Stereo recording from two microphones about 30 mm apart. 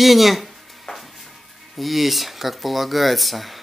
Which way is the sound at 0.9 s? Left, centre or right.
Centre.